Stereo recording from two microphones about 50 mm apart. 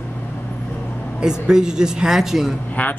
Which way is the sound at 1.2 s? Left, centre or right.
Centre.